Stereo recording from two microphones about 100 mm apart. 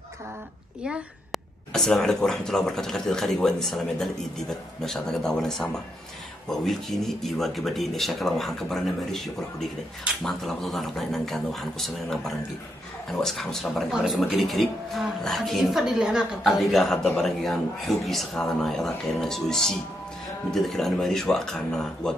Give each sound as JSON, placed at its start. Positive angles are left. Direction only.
{"t": 0.8, "sound": "a child's voice", "side_deg": -10}
{"t": 1.7, "sound": "speech", "side_deg": 5}